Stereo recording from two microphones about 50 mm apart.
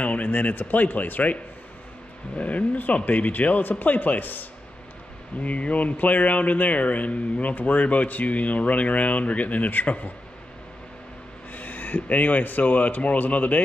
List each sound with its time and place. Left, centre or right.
0.0 s speech: left
11.5 s speech: left